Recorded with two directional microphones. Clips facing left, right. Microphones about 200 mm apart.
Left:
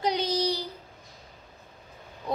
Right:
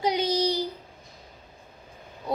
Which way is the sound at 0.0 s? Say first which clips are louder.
Right 2 dB; 10° right (ahead or behind).